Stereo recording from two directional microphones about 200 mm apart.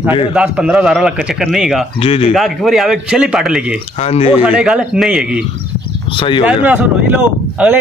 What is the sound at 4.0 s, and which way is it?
Speech, 30° left (ahead or behind).